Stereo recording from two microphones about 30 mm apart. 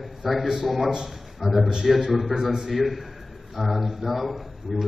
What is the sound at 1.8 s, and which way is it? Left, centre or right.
Speech, centre.